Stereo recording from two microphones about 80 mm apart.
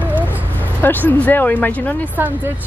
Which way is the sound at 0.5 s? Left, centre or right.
Left.